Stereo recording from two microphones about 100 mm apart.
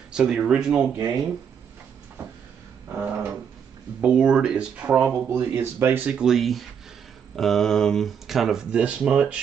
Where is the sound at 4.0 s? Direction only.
10° right (ahead or behind).